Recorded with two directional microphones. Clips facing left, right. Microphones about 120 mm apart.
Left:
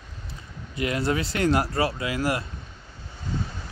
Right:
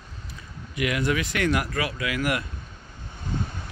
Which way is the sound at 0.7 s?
30° left (ahead or behind).